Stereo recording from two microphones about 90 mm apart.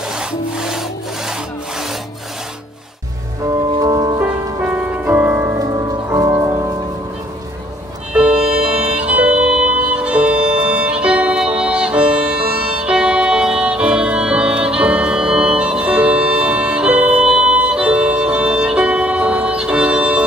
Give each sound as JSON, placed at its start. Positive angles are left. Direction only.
{"t": 0.2, "sound": "sawing", "side_deg": -5}
{"t": 3.8, "sound": "music", "side_deg": -45}
{"t": 4.2, "sound": "music", "side_deg": -20}
{"t": 5.6, "sound": "music", "side_deg": -40}
{"t": 8.1, "sound": "music", "side_deg": -10}